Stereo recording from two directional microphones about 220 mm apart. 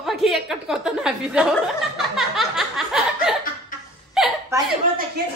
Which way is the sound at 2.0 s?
Centre (ahead or behind).